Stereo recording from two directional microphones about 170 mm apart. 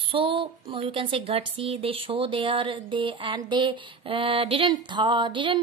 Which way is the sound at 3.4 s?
30° right (ahead or behind).